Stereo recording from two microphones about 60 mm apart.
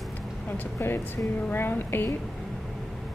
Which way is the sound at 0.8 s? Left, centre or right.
Left.